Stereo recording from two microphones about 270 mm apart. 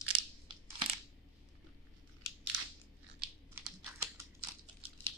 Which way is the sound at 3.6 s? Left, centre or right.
Centre.